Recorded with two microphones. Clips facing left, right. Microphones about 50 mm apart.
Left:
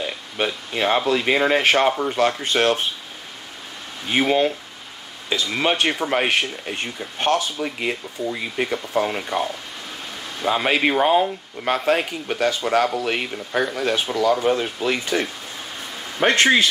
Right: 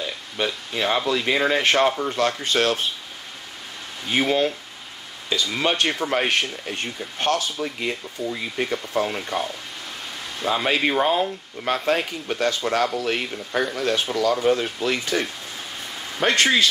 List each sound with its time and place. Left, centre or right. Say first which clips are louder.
0.0 s speech: left 2 dB; centre
4.1 s speech: left 2 dB; centre